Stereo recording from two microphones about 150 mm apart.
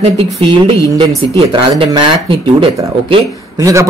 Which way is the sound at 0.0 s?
40° right (ahead or behind).